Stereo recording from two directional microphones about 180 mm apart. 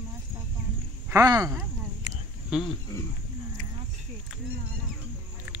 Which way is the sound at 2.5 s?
5° right (ahead or behind).